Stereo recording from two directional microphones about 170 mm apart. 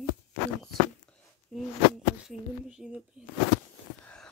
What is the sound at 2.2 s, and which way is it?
Speech, 5° right (ahead or behind).